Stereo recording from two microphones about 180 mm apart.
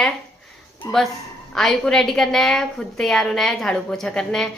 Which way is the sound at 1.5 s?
Centre (ahead or behind).